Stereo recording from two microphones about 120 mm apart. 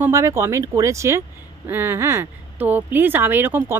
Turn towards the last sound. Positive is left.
turn(degrees=-15)  # may be behind; listen again after turning